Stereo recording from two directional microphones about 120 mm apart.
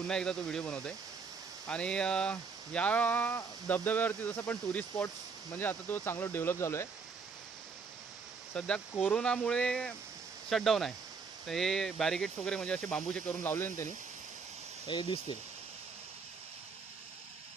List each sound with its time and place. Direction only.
0.0 s speech: 5° left (ahead or behind); by 6.9 s 25° left (ahead or behind)
8.5 s speech: 10° left (ahead or behind)
13.4 s speech: 20° left (ahead or behind)
14.9 s speech: 45° left (ahead or behind)